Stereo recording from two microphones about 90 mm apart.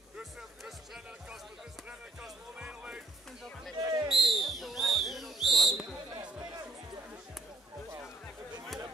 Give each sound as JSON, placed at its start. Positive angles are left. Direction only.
{"t": 2.2, "sound": "music", "side_deg": -10}
{"t": 3.7, "sound": "basketball bounce", "side_deg": -40}
{"t": 4.1, "sound": "a sound", "side_deg": 0}